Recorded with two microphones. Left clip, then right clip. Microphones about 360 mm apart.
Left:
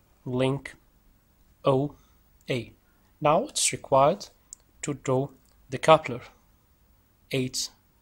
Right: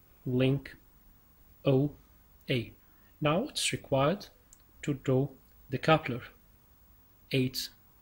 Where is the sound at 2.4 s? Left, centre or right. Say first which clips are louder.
Left 2 dB; centre.